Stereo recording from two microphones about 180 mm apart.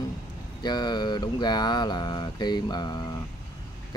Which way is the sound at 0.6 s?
25° left (ahead or behind).